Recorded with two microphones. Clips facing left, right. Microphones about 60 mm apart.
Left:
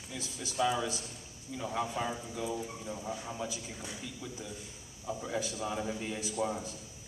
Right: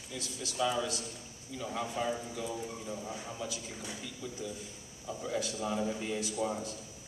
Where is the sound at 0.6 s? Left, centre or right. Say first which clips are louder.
Left 1 dB; centre.